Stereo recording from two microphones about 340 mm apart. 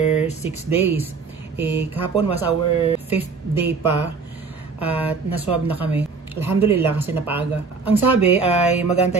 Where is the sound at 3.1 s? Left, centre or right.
Centre.